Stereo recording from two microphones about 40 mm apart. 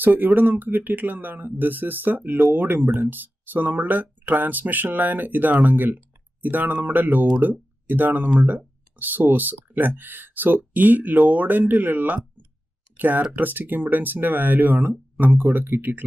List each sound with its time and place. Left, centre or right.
0.0 s speech: right